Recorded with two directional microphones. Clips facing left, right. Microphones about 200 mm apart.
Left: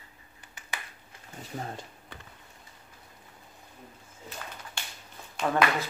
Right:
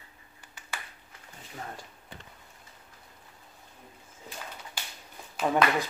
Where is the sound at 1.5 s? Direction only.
30° left (ahead or behind).